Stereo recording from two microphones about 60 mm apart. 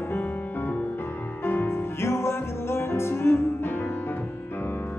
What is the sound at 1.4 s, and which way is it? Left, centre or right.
Music, left.